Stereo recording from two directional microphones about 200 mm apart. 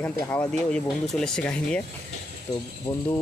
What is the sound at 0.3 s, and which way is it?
Speech, 5° left (ahead or behind).